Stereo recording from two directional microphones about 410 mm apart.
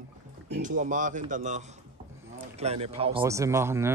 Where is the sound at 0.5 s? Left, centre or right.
Centre.